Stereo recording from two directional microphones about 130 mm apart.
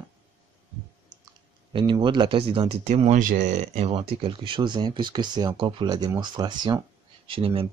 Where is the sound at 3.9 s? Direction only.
45° right (ahead or behind).